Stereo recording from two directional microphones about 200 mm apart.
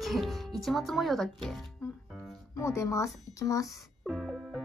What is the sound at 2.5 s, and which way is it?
Speech, 15° left (ahead or behind).